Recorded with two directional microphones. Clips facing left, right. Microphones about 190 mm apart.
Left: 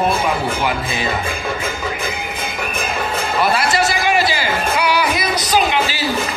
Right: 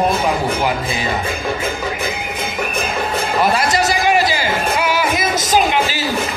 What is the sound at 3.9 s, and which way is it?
Music, 40° right (ahead or behind).